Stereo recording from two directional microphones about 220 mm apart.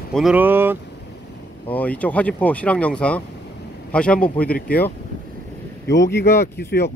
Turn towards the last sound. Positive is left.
turn(degrees=45)  # may be behind; listen again after turning